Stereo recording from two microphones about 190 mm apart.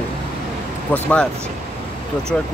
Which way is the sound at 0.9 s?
5° left (ahead or behind).